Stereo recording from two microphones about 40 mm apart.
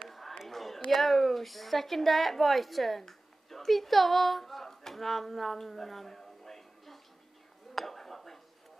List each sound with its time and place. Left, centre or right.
0.4 s a sound: centre
0.9 s a woman's voice: centre
7.7 s chink: centre